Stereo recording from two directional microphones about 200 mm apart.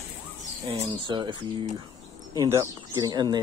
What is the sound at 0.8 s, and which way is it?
Speech, 20° right (ahead or behind).